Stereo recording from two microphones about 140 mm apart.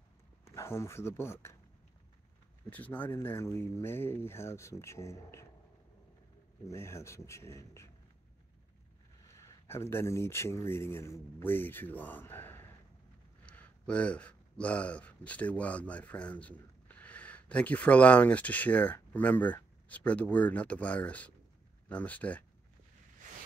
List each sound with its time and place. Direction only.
0.5 s speech: 20° left (ahead or behind)
2.7 s speech: 10° left (ahead or behind)
6.7 s speech: 20° left (ahead or behind)
9.3 s speech: 20° left (ahead or behind)